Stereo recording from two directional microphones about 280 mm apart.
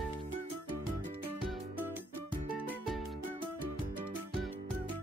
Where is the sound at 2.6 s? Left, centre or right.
Centre.